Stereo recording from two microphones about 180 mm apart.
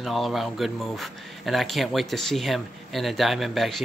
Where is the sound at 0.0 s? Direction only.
Centre (ahead or behind).